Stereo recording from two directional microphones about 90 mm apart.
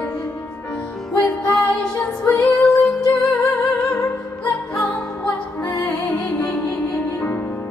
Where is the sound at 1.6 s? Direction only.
15° left (ahead or behind).